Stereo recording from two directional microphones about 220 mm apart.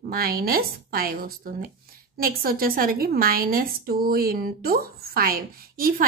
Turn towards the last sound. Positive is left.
turn(degrees=-40)  # may be behind; listen again after turning